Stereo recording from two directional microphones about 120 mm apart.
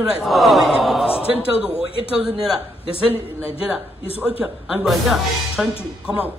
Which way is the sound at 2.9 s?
50° left (ahead or behind).